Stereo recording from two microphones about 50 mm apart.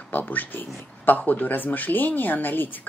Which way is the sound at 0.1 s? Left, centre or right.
Left.